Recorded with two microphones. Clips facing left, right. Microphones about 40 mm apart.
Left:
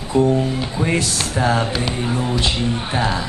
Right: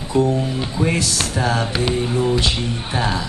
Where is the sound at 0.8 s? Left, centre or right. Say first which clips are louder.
Right 1 dB; centre.